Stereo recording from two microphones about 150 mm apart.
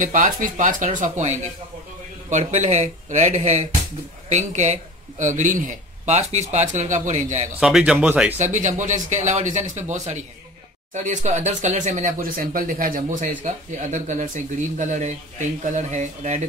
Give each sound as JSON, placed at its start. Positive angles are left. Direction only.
{"t": 0.0, "sound": "speech", "side_deg": -60}
{"t": 7.6, "sound": "speech", "side_deg": -5}
{"t": 8.4, "sound": "speech", "side_deg": -55}